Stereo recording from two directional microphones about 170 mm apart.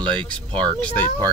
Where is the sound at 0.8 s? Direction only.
10° left (ahead or behind).